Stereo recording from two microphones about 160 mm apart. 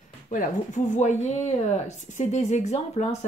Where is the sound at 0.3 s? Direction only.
50° left (ahead or behind).